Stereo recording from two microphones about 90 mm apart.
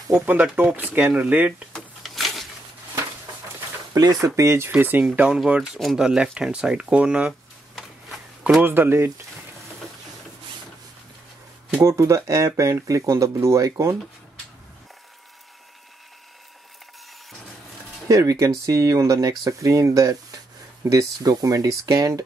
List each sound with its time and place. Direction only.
0.1 s speech: 20° right (ahead or behind)
1.7 s a sound: 5° left (ahead or behind)
3.9 s speech: 40° right (ahead or behind); by 5.4 s 15° right (ahead or behind)
5.8 s speech: 5° right (ahead or behind)
8.5 s speech: 20° right (ahead or behind)
11.8 s speech: 35° right (ahead or behind)
18.0 s speech: 40° right (ahead or behind)